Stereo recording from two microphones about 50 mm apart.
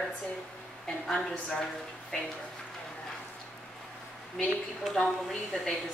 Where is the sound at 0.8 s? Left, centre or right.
Centre.